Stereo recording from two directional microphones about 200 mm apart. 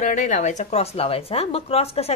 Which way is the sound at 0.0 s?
35° left (ahead or behind).